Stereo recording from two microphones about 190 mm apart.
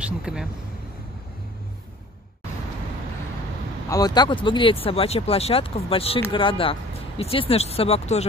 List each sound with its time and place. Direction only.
0.0 s speech: 5° right (ahead or behind)
3.9 s speech: 20° left (ahead or behind)